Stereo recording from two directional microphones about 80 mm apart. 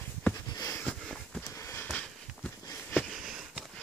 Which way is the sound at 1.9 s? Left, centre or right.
Centre.